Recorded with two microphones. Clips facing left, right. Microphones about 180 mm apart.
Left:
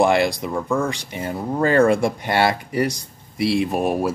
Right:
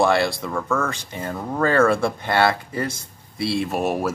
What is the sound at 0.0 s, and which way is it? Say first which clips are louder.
Speech: left 2 dB; 15° left (ahead or behind).